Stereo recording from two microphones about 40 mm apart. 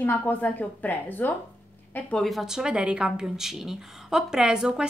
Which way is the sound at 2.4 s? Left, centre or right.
Centre.